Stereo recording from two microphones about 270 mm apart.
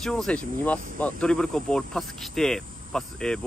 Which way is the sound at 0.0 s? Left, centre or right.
Centre.